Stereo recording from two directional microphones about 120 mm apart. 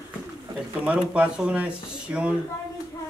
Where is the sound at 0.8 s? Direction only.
10° right (ahead or behind).